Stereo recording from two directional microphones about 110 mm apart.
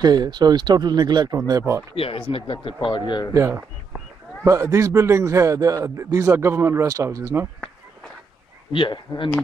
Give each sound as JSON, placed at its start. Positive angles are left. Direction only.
{"t": 0.0, "sound": "speech", "side_deg": -35}
{"t": 2.0, "sound": "speech", "side_deg": 55}
{"t": 3.3, "sound": "speech", "side_deg": -25}
{"t": 8.7, "sound": "speech", "side_deg": 45}